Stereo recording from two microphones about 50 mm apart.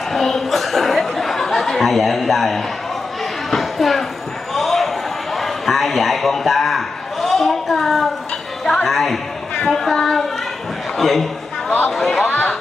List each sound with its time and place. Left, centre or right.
0.1 s a sound: centre
9.7 s a child's voice: centre
12.3 s chatter: left